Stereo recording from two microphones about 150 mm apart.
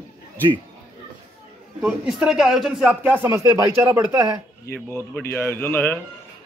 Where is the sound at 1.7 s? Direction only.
5° right (ahead or behind).